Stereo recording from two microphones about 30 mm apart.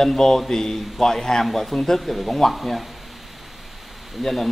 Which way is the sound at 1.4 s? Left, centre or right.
Centre.